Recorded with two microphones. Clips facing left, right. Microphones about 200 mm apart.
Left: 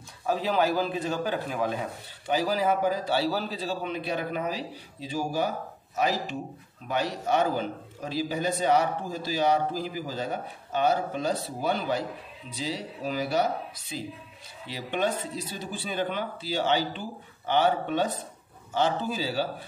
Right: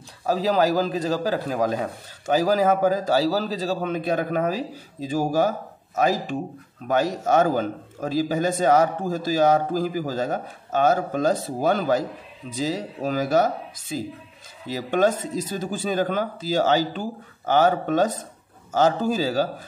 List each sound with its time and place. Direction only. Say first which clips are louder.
0.3 s a man's voice: right 5 dB; 40° right (ahead or behind)